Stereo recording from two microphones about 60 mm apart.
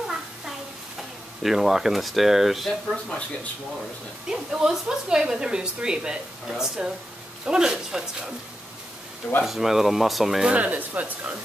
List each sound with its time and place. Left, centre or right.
0.0 s a sound: centre
1.4 s speech: centre
4.3 s a woman's voice: centre
9.4 s speech: centre
10.4 s speech: right